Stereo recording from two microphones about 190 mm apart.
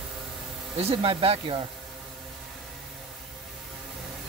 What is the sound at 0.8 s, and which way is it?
Speech, 30° right (ahead or behind).